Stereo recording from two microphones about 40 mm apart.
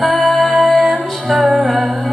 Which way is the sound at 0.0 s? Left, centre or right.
Centre.